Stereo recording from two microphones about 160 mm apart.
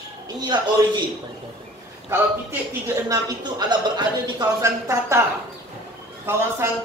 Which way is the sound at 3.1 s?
25° right (ahead or behind).